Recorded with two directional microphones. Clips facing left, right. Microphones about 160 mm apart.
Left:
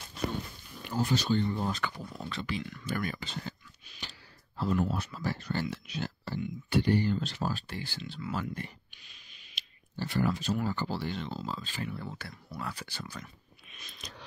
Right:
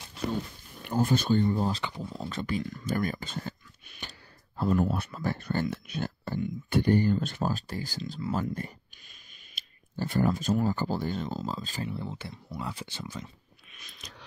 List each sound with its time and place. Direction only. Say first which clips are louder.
0.8 s speech: right 4 dB; 50° right (ahead or behind)
1.7 s speech: right 2 dB; 25° right (ahead or behind)
2.3 s speech: right 4 dB; 45° right (ahead or behind)
11.9 s speech: right 4 dB; 25° right (ahead or behind)
13.7 s a sound: left 2 dB; 25° left (ahead or behind)